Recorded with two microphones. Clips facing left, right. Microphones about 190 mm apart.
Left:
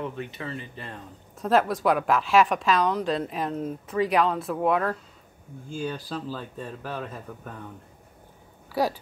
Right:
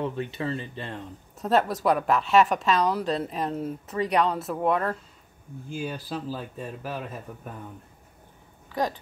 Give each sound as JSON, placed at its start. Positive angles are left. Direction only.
{"t": 0.0, "sound": "speech", "side_deg": -30}
{"t": 1.4, "sound": "a woman's voice", "side_deg": 0}
{"t": 8.8, "sound": "speech", "side_deg": 10}